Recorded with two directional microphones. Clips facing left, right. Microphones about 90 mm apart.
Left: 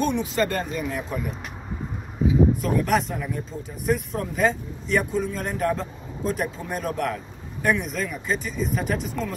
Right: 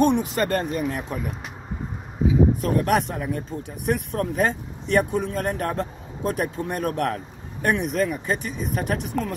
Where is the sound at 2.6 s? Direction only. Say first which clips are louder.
Right 1 dB; 50° right (ahead or behind).